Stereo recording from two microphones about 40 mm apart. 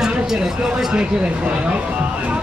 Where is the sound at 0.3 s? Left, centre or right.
Centre.